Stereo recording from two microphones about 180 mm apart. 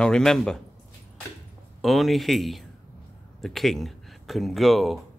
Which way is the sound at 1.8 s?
Centre (ahead or behind).